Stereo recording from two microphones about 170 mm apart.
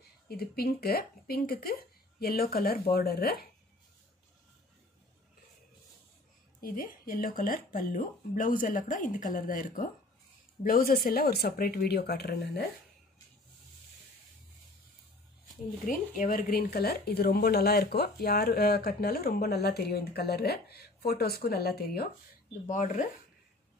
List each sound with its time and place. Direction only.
0.3 s speech: 65° left (ahead or behind)
6.6 s speech: 55° left (ahead or behind)
15.9 s speech: 55° left (ahead or behind)
22.7 s speech: 50° left (ahead or behind)